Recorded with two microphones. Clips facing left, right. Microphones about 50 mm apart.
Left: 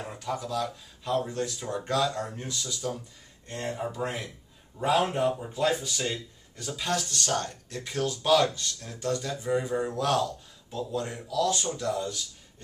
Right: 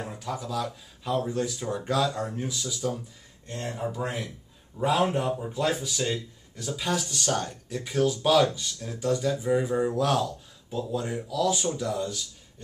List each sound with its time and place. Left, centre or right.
0.0 s speech: centre
3.4 s speech: centre